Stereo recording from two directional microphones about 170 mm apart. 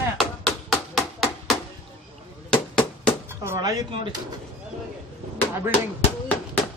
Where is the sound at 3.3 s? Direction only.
15° right (ahead or behind).